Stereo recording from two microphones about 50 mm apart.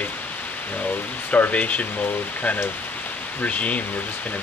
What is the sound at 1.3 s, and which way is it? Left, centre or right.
Speech, left.